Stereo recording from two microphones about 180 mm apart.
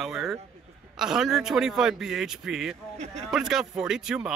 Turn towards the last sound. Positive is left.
turn(degrees=-5)  # may be behind; listen again after turning